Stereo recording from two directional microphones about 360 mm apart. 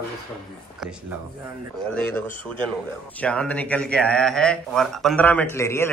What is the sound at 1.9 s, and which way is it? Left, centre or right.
Speech, centre.